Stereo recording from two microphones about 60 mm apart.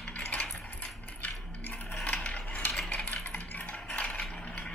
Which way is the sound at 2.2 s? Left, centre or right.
Centre.